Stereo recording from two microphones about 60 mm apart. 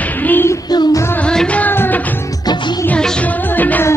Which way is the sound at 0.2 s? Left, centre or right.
Left.